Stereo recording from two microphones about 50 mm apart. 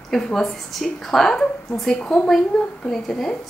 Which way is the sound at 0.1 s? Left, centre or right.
Centre.